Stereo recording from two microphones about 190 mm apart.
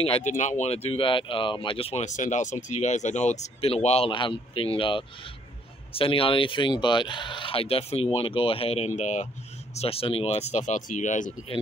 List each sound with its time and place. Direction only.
0.0 s speech: 35° left (ahead or behind)
0.8 s speech: 25° left (ahead or behind)